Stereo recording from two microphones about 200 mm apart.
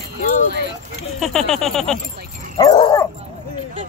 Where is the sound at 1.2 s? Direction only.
Centre (ahead or behind).